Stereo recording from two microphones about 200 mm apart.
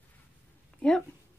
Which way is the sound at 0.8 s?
5° left (ahead or behind).